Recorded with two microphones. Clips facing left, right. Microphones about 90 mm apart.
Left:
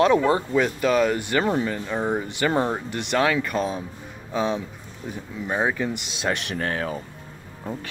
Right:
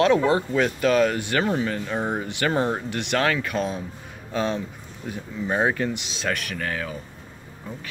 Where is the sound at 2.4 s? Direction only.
15° left (ahead or behind).